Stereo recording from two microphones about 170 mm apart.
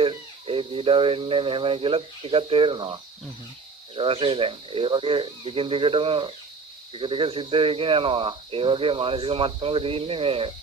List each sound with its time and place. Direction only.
0.0 s speech: 30° right (ahead or behind)